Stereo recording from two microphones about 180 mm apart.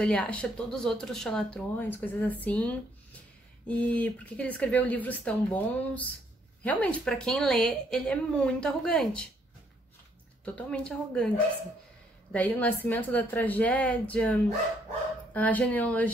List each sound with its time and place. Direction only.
0.0 s speech: 5° left (ahead or behind)
10.4 s speech: 5° left (ahead or behind)
15.3 s speech: 10° left (ahead or behind)